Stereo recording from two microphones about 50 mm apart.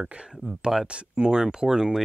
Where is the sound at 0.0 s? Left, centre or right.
Right.